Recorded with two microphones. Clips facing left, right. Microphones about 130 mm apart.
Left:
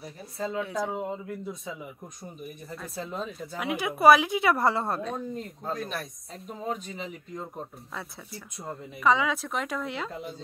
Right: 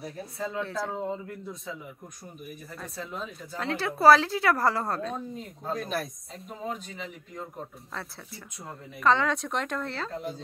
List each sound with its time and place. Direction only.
0.0 s speech: centre (ahead or behind)
0.6 s speech: 15° left (ahead or behind)
3.5 s speech: 10° left (ahead or behind)
5.0 s speech: centre (ahead or behind)
9.0 s speech: 5° left (ahead or behind)